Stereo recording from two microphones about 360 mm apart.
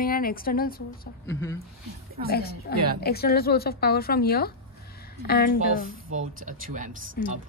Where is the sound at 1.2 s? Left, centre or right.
Centre.